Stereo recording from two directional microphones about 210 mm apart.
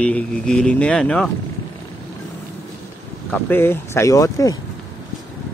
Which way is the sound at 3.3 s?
10° left (ahead or behind).